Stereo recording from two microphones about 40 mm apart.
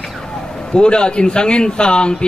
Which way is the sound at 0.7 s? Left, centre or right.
Left.